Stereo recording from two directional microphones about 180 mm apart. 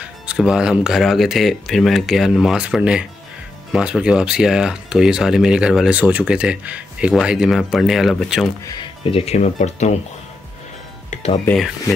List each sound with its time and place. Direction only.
0.0 s speech: 5° right (ahead or behind)
9.1 s speech: 35° left (ahead or behind)
11.4 s speech: centre (ahead or behind)